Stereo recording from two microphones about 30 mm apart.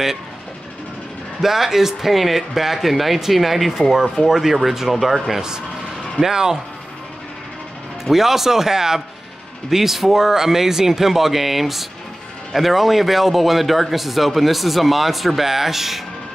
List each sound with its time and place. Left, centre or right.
1.4 s speech: centre
6.2 s speech: centre
8.0 s speech: centre